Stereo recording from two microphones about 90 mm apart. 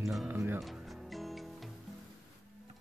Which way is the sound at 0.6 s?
Centre (ahead or behind).